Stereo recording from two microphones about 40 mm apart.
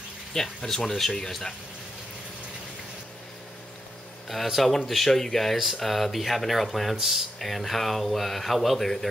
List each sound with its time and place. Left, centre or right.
0.3 s speech: centre
4.6 s speech: centre
7.0 s speech: centre
7.3 s speech: centre